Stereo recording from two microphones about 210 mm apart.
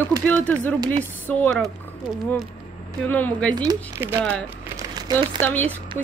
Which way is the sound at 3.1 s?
5° left (ahead or behind).